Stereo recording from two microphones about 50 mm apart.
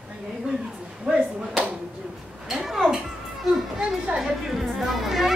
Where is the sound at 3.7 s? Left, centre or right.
Centre.